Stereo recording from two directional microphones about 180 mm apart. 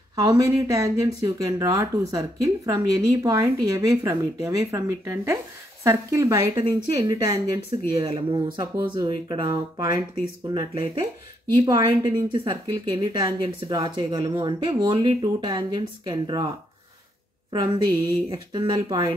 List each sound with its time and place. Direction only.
0.1 s a woman's voice: 20° right (ahead or behind)
18.3 s a woman's voice: 25° right (ahead or behind)